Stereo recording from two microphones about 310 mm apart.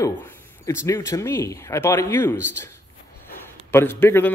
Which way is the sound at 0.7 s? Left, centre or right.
Centre.